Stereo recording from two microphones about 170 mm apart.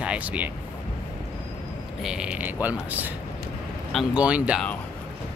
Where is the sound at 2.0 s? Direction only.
5° right (ahead or behind).